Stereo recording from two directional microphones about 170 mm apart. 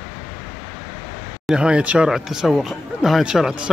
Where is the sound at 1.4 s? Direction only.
5° right (ahead or behind).